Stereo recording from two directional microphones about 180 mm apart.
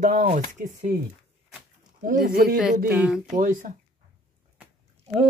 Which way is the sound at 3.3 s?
45° right (ahead or behind).